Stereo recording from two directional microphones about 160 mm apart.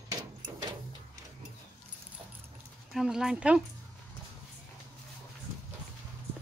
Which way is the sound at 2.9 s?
Centre (ahead or behind).